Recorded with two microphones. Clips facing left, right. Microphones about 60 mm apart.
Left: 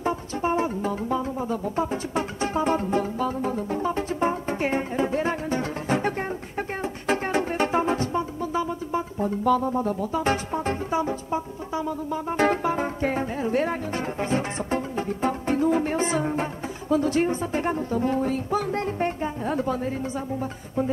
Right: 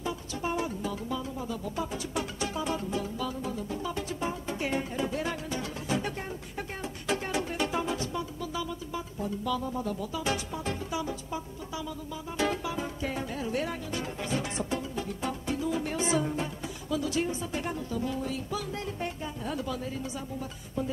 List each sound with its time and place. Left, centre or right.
0.0 s music: left
16.9 s speech: left